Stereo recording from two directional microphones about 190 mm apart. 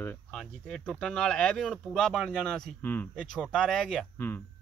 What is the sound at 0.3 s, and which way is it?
Speech, centre (ahead or behind).